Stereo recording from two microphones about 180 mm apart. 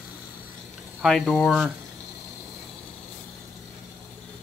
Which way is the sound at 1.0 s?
Centre (ahead or behind).